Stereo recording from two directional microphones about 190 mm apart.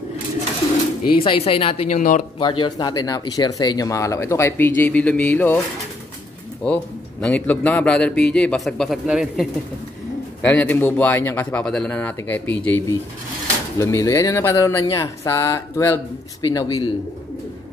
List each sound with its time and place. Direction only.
1.2 s speech: 30° left (ahead or behind)
2.3 s speech: 25° left (ahead or behind); by 5.6 s 10° left (ahead or behind)
6.6 s a man's voice: 5° left (ahead or behind)
10.4 s speech: 5° left (ahead or behind)